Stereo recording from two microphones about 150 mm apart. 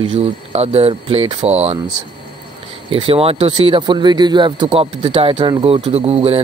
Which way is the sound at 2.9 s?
35° right (ahead or behind).